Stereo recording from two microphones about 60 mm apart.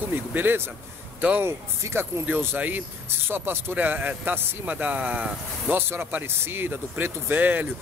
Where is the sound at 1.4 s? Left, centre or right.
Right.